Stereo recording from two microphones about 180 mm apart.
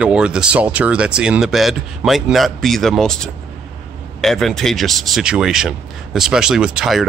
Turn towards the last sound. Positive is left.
turn(degrees=-5)  # may be behind; listen again after turning